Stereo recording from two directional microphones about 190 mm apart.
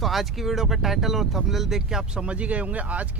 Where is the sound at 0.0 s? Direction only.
Centre (ahead or behind).